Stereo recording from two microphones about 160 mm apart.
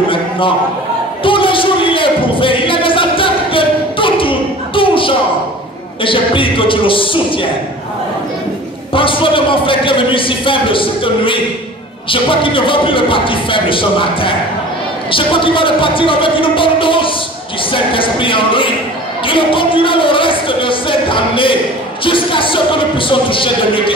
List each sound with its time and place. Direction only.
1.2 s music: 35° left (ahead or behind)
6.0 s a man's voice: 35° left (ahead or behind)
8.9 s a man's voice: 35° left (ahead or behind)